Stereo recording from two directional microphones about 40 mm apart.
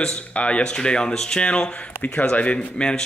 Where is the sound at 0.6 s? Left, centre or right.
Left.